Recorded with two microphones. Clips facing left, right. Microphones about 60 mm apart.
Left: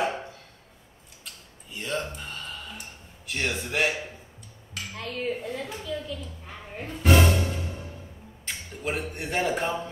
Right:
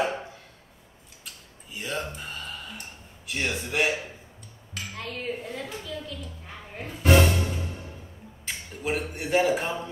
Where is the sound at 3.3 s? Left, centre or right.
Centre.